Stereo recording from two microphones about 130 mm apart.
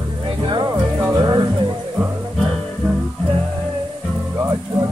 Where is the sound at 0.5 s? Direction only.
35° right (ahead or behind).